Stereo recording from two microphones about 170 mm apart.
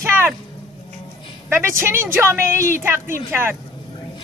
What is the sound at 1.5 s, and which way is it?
A woman's voice, 15° right (ahead or behind).